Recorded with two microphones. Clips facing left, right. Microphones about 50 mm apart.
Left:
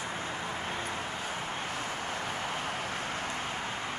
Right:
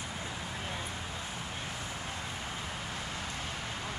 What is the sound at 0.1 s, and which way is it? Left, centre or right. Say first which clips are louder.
Vehicle: left 4 dB; left.